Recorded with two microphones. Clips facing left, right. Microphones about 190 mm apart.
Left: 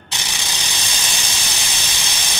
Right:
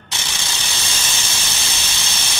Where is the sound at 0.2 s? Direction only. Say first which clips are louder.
Left 1 dB; 15° left (ahead or behind).